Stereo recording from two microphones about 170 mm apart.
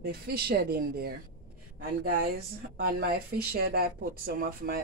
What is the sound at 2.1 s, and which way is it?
Speech, 65° right (ahead or behind).